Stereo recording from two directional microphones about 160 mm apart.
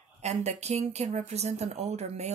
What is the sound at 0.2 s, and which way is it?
A woman's voice, 45° right (ahead or behind).